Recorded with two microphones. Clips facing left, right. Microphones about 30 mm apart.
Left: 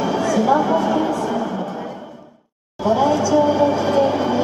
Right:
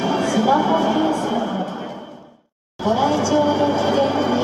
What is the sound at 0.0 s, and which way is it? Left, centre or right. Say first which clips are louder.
Music: even; right.